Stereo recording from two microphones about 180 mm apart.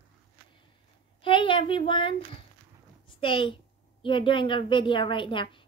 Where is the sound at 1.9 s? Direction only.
30° left (ahead or behind).